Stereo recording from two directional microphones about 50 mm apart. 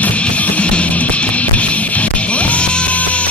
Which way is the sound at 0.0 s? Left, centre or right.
Left.